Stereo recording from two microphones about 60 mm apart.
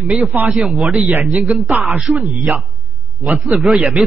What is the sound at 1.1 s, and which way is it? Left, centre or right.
Speech, right.